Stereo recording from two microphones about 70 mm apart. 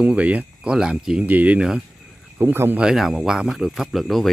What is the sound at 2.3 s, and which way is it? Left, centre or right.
Speech, right.